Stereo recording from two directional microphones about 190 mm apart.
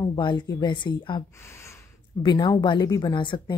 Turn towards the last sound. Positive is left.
turn(degrees=25)  # may be behind; listen again after turning